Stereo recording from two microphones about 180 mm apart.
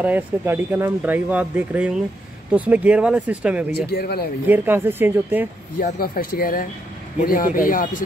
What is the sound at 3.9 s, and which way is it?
Speech, 60° left (ahead or behind).